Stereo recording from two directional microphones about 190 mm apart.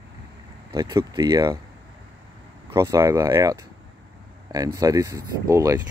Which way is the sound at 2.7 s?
15° right (ahead or behind).